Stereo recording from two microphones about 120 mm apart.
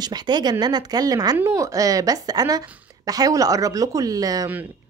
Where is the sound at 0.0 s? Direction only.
35° right (ahead or behind).